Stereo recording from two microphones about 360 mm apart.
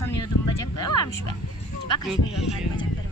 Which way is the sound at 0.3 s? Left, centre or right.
Left.